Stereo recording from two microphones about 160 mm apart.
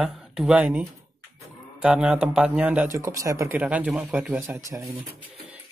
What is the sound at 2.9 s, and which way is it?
Speech, 20° right (ahead or behind).